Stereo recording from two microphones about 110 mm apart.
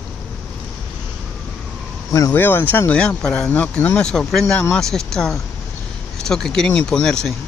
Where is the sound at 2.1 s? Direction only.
35° left (ahead or behind).